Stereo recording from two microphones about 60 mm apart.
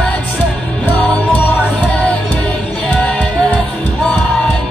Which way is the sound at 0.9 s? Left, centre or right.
Left.